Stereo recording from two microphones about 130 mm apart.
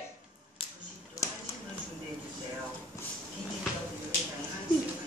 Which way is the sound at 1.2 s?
25° left (ahead or behind).